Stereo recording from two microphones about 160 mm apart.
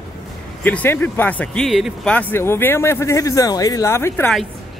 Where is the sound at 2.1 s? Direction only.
10° left (ahead or behind).